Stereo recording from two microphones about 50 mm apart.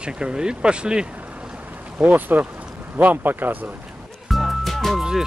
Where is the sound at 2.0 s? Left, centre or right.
Right.